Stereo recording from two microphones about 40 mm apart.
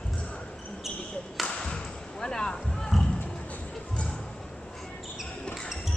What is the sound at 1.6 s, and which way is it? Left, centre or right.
Music, centre.